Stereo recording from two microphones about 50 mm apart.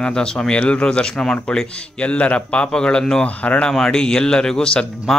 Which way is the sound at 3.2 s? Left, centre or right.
Left.